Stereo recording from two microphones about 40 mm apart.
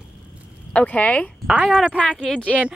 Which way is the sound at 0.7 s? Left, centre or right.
Left.